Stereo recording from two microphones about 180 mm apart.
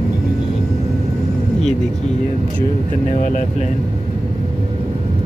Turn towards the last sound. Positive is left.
turn(degrees=45)  # may be behind; listen again after turning